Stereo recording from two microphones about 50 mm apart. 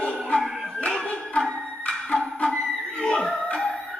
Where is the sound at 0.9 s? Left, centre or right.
Left.